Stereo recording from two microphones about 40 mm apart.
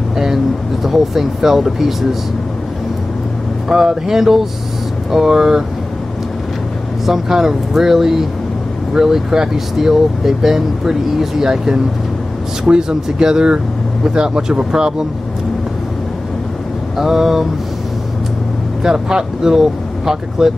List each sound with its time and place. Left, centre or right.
0.8 s speech: centre
3.6 s speech: centre
7.1 s speech: centre
16.9 s speech: centre
18.8 s speech: centre